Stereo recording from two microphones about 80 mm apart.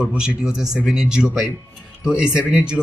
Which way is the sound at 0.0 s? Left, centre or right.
Centre.